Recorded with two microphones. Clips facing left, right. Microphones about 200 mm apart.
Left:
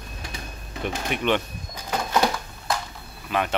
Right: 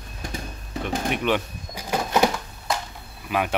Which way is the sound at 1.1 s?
5° right (ahead or behind).